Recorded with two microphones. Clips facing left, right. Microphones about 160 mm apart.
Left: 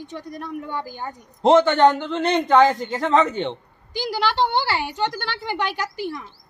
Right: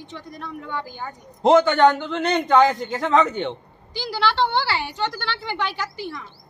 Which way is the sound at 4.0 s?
45° left (ahead or behind).